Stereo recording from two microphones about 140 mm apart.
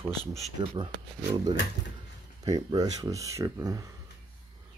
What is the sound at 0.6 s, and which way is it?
Speech, 35° right (ahead or behind).